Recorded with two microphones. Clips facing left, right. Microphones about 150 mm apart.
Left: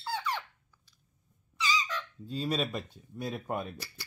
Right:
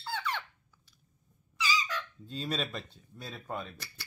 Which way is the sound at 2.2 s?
10° left (ahead or behind).